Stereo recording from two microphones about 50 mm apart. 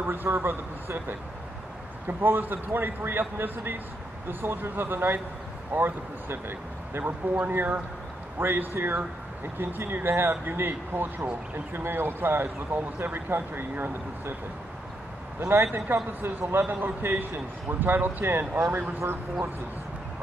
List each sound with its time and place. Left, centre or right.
0.0 s speech: right
8.4 s speech: right
15.4 s a man's voice: right